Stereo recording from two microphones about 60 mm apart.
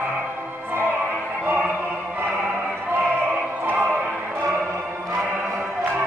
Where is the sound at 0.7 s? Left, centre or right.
Right.